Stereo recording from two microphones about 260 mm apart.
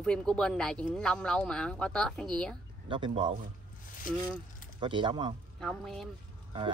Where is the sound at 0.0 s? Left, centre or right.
Centre.